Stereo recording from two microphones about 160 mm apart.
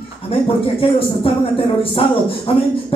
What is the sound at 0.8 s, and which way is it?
Speech, 35° left (ahead or behind).